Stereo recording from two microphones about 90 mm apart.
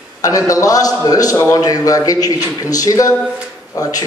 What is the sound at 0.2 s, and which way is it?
A man's voice, 40° left (ahead or behind).